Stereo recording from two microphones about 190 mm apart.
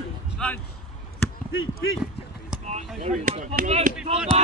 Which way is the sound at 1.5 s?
90° left.